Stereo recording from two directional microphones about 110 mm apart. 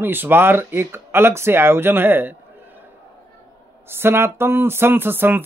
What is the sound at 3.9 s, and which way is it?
Speech, 20° right (ahead or behind).